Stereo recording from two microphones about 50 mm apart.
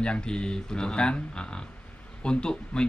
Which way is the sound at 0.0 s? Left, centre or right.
Centre.